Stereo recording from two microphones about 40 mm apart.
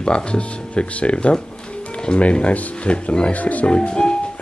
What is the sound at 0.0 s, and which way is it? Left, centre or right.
Speech, left.